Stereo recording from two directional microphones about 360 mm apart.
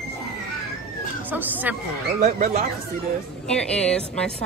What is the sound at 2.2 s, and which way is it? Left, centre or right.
Speech, right.